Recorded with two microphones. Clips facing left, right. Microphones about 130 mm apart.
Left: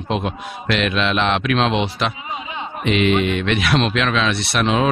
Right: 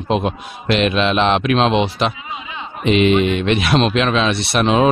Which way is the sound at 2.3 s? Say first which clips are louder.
Left 1 dB; 35° left (ahead or behind).